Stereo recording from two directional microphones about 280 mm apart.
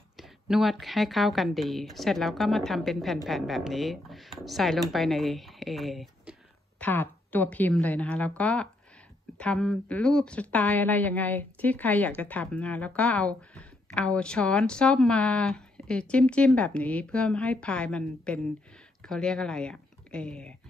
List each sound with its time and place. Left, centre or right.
0.2 s a woman's voice: centre